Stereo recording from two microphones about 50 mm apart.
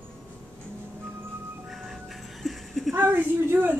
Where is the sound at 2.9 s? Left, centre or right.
Right.